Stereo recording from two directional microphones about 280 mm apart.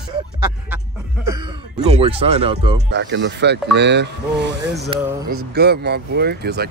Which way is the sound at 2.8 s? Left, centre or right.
Right.